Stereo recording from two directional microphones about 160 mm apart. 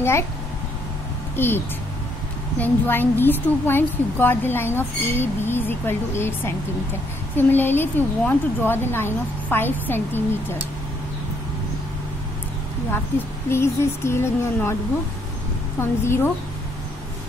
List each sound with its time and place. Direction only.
1.3 s a woman's voice: 15° left (ahead or behind)
2.6 s a woman's voice: 10° left (ahead or behind)
13.5 s a woman's voice: 15° left (ahead or behind)
15.8 s a woman's voice: 15° left (ahead or behind)